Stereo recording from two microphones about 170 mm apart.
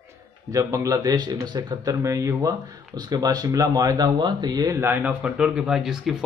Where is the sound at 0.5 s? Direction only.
20° right (ahead or behind).